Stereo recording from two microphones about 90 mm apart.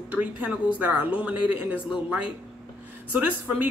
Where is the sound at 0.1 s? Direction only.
15° right (ahead or behind).